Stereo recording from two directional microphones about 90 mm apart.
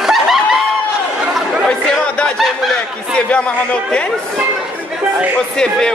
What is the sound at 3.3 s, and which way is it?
Speech, 15° left (ahead or behind).